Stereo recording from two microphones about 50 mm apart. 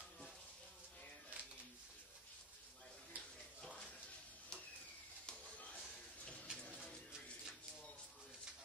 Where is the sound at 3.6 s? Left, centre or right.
Centre.